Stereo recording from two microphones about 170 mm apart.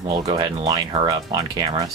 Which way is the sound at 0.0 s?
25° right (ahead or behind).